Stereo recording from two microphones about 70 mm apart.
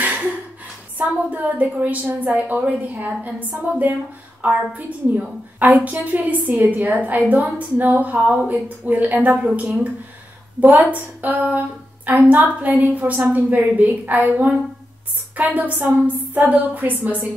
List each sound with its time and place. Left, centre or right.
0.0 s a sound: right
0.9 s a woman's voice: right
10.6 s a woman's voice: right
15.3 s a woman's voice: right